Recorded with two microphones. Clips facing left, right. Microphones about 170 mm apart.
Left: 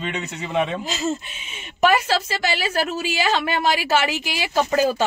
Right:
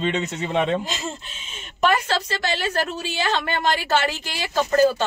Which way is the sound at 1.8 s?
10° left (ahead or behind).